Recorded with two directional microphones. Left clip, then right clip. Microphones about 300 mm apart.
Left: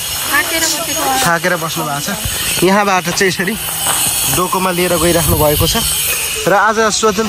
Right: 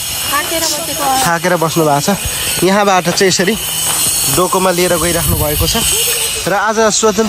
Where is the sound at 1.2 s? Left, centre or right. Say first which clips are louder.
Right 1 dB; centre.